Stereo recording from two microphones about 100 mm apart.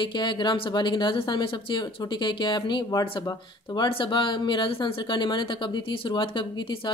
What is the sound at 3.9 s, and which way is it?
Speech, 55° left (ahead or behind).